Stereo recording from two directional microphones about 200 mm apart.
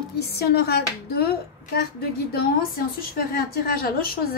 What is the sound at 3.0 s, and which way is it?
A woman's voice, 50° left (ahead or behind).